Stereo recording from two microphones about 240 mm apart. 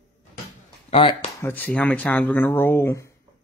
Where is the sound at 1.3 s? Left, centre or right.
Centre.